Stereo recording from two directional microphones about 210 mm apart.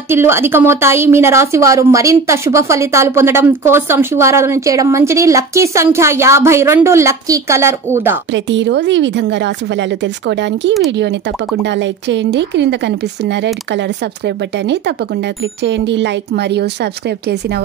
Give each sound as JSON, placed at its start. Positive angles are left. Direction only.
{"t": 0.1, "sound": "a woman's voice", "side_deg": -10}
{"t": 8.3, "sound": "a woman's voice", "side_deg": -60}